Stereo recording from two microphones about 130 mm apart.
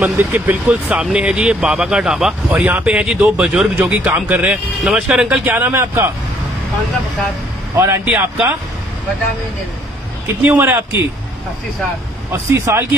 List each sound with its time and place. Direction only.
0.0 s speech: 15° right (ahead or behind)
7.7 s speech: 20° right (ahead or behind)
10.2 s speech: 15° right (ahead or behind)
12.3 s speech: 20° right (ahead or behind)